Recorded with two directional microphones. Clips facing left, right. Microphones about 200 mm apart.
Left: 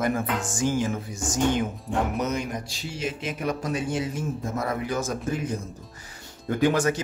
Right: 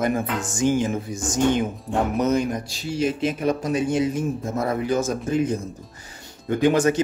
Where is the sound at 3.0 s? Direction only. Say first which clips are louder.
Right 7 dB; 35° right (ahead or behind).